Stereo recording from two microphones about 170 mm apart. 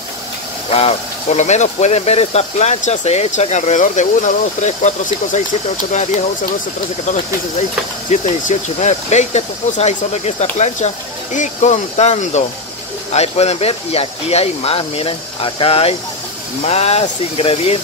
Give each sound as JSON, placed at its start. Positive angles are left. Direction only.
{"t": 0.7, "sound": "speech", "side_deg": 40}
{"t": 8.1, "sound": "speech", "side_deg": 45}